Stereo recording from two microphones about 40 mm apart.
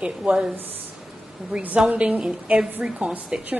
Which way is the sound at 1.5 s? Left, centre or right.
Right.